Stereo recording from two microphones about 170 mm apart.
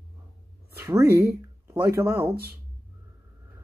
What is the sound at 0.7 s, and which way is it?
Speech, 15° right (ahead or behind).